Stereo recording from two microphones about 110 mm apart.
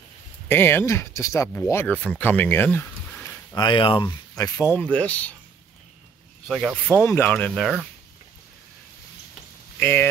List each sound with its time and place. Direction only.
0.5 s speech: 20° left (ahead or behind)
3.5 s speech: 45° left (ahead or behind)
4.9 s speech: 15° left (ahead or behind)
6.4 s speech: 5° left (ahead or behind)
7.1 s speech: 20° left (ahead or behind)
7.3 s speech: 5° left (ahead or behind)
9.8 s speech: 20° left (ahead or behind)